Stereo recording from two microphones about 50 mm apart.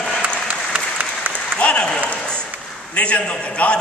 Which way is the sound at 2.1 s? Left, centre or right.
Left.